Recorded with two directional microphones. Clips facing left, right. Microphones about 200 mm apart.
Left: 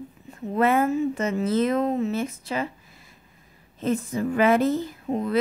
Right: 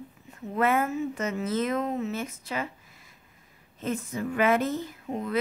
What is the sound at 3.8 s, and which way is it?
Speech, 35° left (ahead or behind).